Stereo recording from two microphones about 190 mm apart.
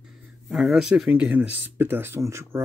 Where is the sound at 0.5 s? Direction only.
Centre (ahead or behind).